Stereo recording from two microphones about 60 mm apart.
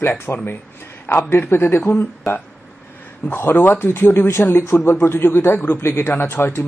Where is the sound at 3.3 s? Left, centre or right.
Left.